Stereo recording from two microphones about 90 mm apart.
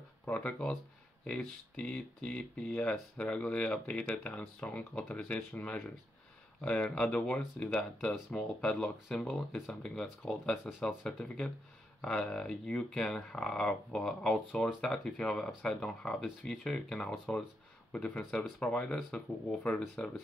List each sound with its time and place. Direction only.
0.2 s speech: 15° left (ahead or behind)